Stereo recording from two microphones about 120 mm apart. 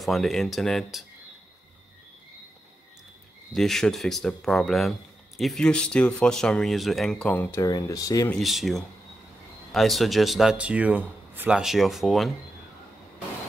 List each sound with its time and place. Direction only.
0.0 s a man's voice: centre (ahead or behind)
3.5 s a man's voice: 5° left (ahead or behind)
7.6 s speech: 30° left (ahead or behind)
8.3 s a man's voice: centre (ahead or behind)